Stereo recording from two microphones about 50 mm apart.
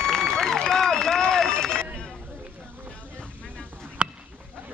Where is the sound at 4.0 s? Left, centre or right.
Right.